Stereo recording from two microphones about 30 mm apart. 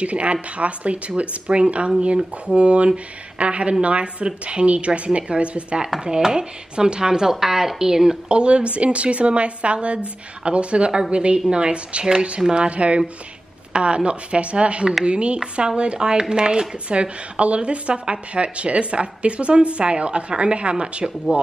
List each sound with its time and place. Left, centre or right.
0.0 s a woman's voice: right
6.3 s speech: right
8.3 s a woman's voice: right
16.9 s a woman's voice: right